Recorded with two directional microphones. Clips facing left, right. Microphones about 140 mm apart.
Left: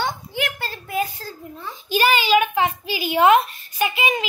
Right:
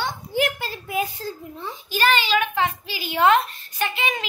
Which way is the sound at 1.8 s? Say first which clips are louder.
Left 3 dB; 10° left (ahead or behind).